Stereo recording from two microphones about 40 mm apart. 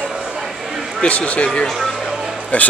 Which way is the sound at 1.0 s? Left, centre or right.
Left.